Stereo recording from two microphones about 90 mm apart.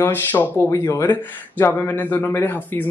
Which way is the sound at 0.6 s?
35° left (ahead or behind).